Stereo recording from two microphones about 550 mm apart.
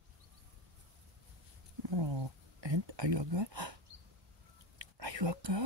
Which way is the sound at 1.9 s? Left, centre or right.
Right.